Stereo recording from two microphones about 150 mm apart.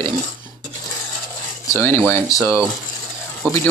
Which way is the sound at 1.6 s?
15° left (ahead or behind).